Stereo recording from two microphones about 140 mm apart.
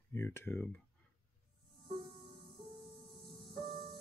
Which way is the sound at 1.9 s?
40° right (ahead or behind).